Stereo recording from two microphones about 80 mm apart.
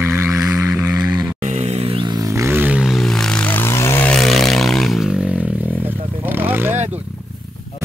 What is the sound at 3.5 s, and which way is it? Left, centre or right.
Vehicle, left.